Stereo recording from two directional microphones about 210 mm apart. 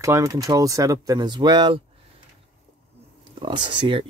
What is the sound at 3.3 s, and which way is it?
Speech, 25° right (ahead or behind).